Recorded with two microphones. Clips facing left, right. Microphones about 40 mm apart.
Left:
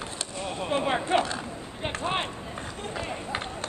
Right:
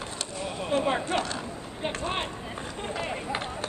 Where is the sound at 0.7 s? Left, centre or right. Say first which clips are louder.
Left 1 dB; centre.